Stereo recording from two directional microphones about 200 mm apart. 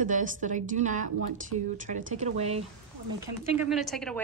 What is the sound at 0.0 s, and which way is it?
A woman's voice, 40° right (ahead or behind).